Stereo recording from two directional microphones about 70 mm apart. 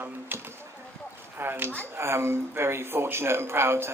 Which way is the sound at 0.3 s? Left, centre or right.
Right.